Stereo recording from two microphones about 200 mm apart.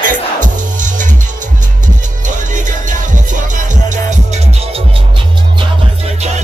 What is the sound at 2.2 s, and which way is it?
Music, 40° right (ahead or behind).